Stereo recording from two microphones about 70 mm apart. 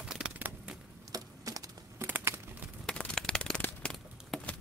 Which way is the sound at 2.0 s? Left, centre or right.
Right.